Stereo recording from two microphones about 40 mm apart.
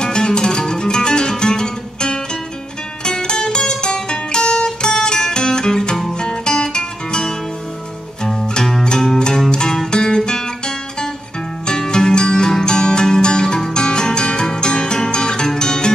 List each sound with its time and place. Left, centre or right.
0.0 s music: centre
11.6 s music: centre